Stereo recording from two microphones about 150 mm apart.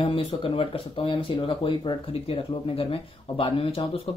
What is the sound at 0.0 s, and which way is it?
Speech, 35° left (ahead or behind).